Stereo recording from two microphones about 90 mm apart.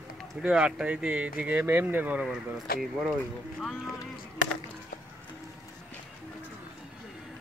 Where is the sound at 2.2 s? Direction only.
5° right (ahead or behind).